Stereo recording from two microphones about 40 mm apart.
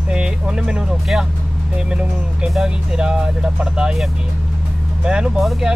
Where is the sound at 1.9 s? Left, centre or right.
Right.